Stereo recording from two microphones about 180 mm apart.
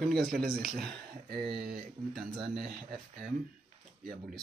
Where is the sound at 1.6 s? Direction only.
45° right (ahead or behind).